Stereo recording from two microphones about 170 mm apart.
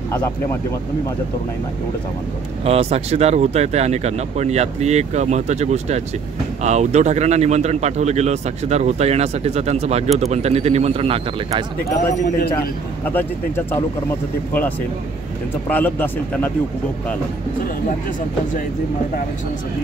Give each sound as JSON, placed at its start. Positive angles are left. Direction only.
{"t": 2.6, "sound": "speech", "side_deg": -35}
{"t": 13.0, "sound": "speech", "side_deg": 10}
{"t": 15.7, "sound": "speech", "side_deg": 10}